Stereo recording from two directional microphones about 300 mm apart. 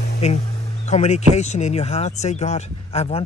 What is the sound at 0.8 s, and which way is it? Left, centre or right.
Speech, left.